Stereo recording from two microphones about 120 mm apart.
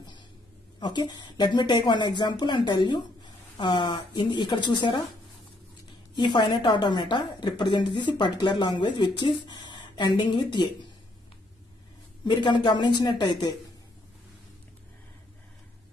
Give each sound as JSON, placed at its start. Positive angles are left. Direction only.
{"t": 0.7, "sound": "a woman's voice", "side_deg": 40}
{"t": 6.1, "sound": "a woman's voice", "side_deg": 40}
{"t": 12.3, "sound": "a woman's voice", "side_deg": 40}